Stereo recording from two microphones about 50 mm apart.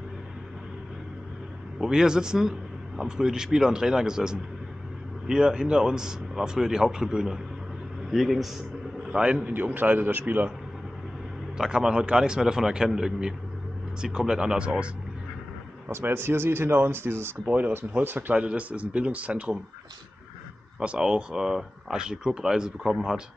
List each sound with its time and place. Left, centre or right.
1.8 s speech: centre
9.4 s a man's voice: right
11.5 s speech: centre
15.9 s speech: right
17.5 s a man's voice: right
18.3 s speech: right
20.8 s speech: centre